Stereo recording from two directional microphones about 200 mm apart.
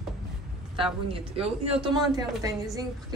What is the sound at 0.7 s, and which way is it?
A woman's voice, 25° right (ahead or behind).